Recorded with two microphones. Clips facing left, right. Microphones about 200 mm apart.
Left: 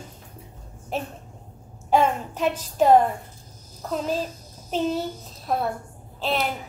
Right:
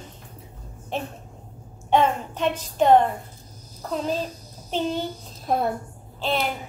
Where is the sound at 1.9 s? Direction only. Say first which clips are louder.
Even; 5° left (ahead or behind).